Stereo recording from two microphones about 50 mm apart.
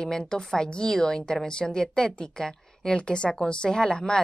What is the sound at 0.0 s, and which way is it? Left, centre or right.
Speech, centre.